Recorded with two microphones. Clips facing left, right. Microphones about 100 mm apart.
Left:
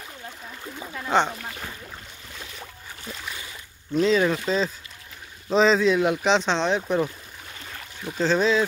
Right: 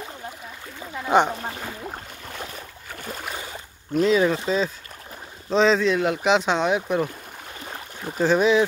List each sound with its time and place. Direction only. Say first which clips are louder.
0.9 s speech: right 3 dB; 15° right (ahead or behind)
1.3 s boat: right 5 dB; 40° right (ahead or behind)
3.9 s speech: right 1 dB; 5° right (ahead or behind)
5.5 s speech: even; centre (ahead or behind)
7.6 s a sound: right 2 dB; 35° right (ahead or behind)
8.2 s speech: right 3 dB; 10° right (ahead or behind)